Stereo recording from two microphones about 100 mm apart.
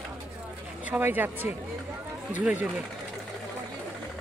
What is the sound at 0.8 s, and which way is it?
A woman's voice, 15° right (ahead or behind).